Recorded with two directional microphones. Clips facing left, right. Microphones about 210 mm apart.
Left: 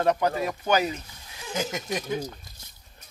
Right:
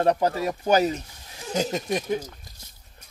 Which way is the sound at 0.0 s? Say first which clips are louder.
Right 2 dB; 35° right (ahead or behind).